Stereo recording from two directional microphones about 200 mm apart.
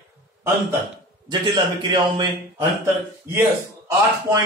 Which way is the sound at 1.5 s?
25° right (ahead or behind).